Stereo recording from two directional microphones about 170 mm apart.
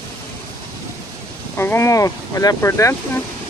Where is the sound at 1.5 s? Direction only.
15° left (ahead or behind).